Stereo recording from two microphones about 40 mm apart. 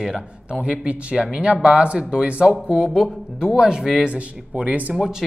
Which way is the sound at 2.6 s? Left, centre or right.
Centre.